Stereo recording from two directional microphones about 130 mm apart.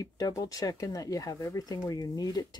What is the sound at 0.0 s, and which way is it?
Speech, 25° left (ahead or behind).